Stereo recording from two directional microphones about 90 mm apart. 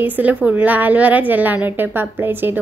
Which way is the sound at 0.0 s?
20° right (ahead or behind).